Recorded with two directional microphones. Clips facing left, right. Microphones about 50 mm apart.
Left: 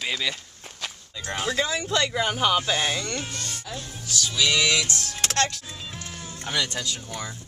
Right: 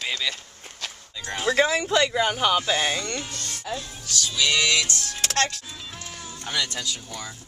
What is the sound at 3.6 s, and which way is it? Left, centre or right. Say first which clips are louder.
Speech: right 4 dB; right.